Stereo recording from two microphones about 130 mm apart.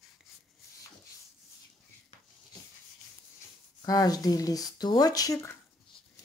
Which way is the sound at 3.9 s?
30° left (ahead or behind).